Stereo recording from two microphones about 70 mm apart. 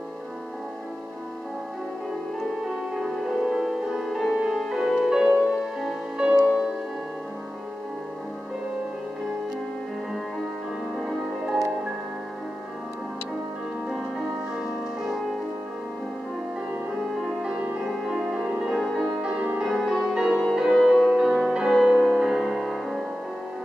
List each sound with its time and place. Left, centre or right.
2.7 s music: centre
11.0 s music: centre
13.8 s music: centre
17.2 s music: centre